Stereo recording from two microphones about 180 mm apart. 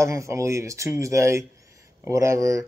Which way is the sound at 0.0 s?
15° right (ahead or behind).